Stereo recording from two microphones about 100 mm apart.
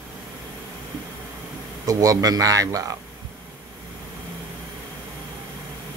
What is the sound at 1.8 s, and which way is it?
Speech, 35° right (ahead or behind).